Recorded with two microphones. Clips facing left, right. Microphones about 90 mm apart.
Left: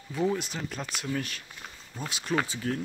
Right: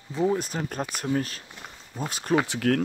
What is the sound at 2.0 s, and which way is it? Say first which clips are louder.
Speech: right 4 dB; 45° right (ahead or behind).